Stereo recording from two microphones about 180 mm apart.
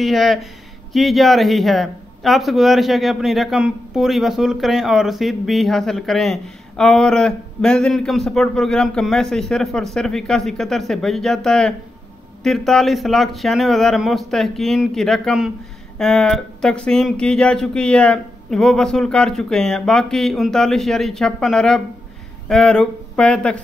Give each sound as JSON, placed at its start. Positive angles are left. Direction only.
{"t": 0.0, "sound": "a man's voice", "side_deg": 0}